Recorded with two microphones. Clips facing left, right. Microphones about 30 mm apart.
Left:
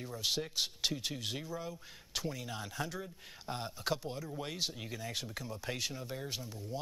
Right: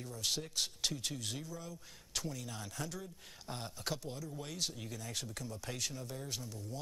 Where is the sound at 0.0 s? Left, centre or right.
Centre.